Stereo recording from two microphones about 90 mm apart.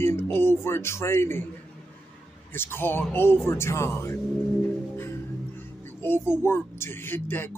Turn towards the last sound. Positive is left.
turn(degrees=25)  # may be behind; listen again after turning